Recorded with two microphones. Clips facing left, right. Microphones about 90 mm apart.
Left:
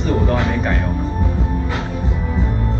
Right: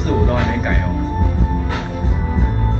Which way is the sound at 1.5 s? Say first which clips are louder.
Even; 35° right (ahead or behind).